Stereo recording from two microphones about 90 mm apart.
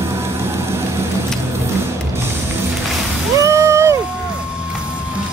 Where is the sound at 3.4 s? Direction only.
35° right (ahead or behind).